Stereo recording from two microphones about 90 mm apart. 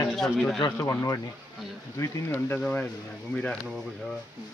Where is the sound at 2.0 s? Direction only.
25° left (ahead or behind).